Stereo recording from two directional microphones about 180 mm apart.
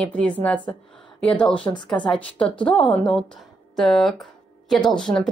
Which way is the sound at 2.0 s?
5° left (ahead or behind).